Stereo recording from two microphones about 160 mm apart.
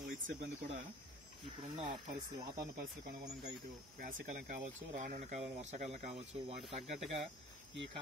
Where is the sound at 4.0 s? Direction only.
55° right (ahead or behind).